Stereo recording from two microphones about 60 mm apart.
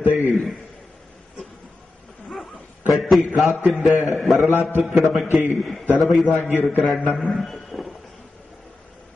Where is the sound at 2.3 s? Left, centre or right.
Centre.